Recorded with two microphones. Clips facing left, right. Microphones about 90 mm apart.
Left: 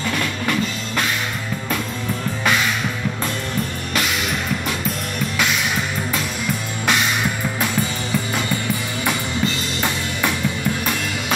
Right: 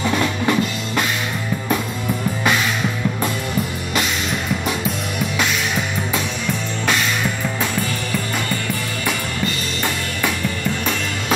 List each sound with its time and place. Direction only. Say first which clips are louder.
0.0 s drum kit: right 4 dB; 20° right (ahead or behind)